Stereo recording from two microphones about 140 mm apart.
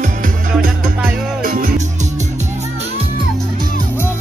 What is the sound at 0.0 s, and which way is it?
Music, 70° right (ahead or behind).